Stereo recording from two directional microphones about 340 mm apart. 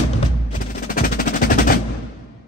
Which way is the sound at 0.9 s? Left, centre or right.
Left.